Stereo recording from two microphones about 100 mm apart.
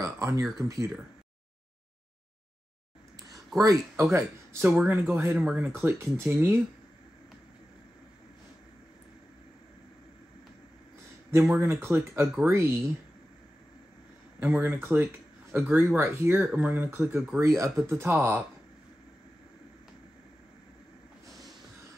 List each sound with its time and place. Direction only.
0.0 s speech: 30° right (ahead or behind)
3.5 s speech: 35° right (ahead or behind)
4.6 s speech: 15° right (ahead or behind)
5.8 s speech: 25° right (ahead or behind)
11.5 s speech: 25° right (ahead or behind)
14.4 s speech: 20° right (ahead or behind)
17.4 s speech: 35° right (ahead or behind)